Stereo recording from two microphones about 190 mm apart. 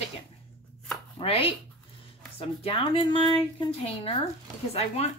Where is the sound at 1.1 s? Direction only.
30° left (ahead or behind).